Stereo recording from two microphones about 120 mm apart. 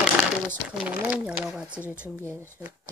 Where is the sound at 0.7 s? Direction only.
10° right (ahead or behind).